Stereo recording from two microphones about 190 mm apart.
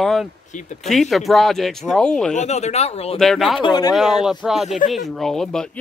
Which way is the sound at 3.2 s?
Centre (ahead or behind).